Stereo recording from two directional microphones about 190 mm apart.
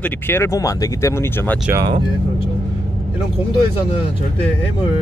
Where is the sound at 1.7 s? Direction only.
20° right (ahead or behind).